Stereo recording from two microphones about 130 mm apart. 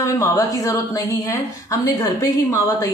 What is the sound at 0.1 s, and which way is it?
A woman's voice, 25° left (ahead or behind).